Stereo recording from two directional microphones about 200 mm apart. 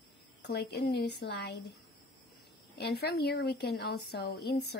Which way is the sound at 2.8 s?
55° left (ahead or behind).